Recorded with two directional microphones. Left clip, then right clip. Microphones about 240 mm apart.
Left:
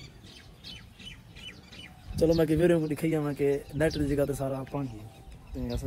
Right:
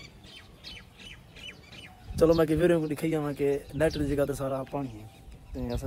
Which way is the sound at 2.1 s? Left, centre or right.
Right.